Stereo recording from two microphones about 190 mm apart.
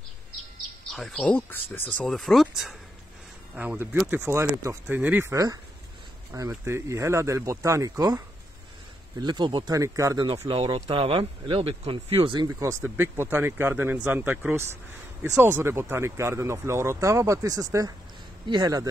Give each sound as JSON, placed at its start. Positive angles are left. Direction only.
{"t": 0.9, "sound": "speech", "side_deg": 5}
{"t": 9.2, "sound": "speech", "side_deg": -25}